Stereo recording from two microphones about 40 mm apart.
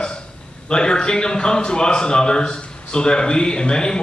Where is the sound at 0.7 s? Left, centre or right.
Left.